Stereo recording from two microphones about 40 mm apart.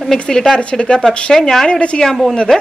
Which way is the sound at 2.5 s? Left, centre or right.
Centre.